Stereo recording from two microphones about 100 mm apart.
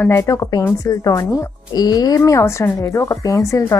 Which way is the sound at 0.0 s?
30° left (ahead or behind).